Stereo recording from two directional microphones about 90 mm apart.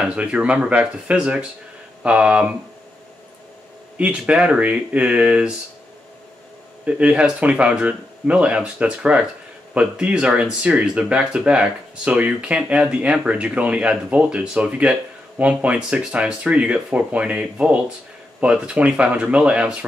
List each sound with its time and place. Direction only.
0.0 s speech: 10° right (ahead or behind)
4.0 s speech: 10° right (ahead or behind)
6.9 s speech: 10° right (ahead or behind)